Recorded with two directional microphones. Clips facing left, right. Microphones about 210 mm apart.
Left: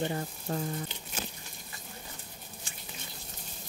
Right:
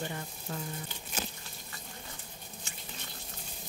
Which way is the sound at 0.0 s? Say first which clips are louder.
Left 6 dB; 35° left (ahead or behind).